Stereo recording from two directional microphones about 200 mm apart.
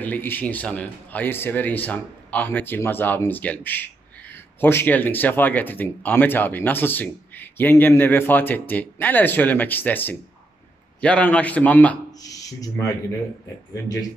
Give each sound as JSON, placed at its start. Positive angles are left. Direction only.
{"t": 0.0, "sound": "speech", "side_deg": 10}
{"t": 12.2, "sound": "speech", "side_deg": 15}